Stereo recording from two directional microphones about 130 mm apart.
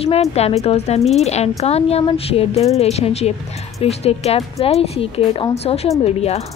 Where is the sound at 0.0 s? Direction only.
50° left (ahead or behind).